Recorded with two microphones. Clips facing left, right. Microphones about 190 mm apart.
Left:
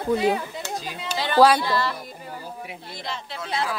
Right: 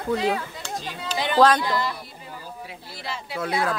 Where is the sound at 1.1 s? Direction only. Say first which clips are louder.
Left 1 dB; 15° right (ahead or behind).